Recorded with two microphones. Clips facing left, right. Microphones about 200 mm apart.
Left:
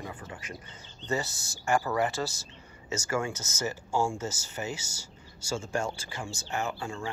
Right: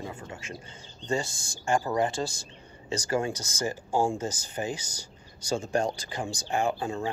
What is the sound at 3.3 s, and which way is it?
Speech, 15° right (ahead or behind).